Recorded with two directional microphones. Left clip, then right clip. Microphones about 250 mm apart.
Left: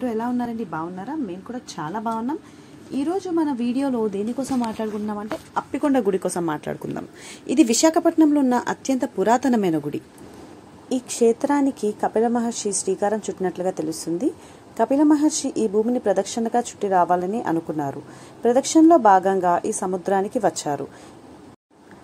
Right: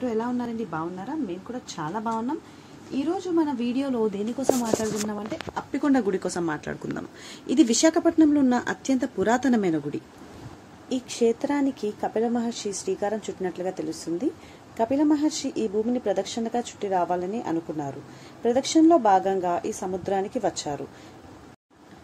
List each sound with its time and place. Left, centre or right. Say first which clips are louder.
0.0 s a woman's voice: left 2 dB; left
5.7 s a woman's voice: left 3 dB; centre